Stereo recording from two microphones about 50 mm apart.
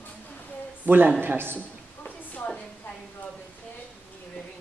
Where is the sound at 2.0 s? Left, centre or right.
Left.